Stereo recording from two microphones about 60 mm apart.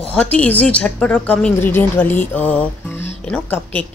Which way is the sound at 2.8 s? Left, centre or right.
Left.